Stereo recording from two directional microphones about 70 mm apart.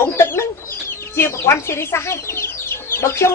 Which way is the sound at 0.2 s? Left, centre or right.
Left.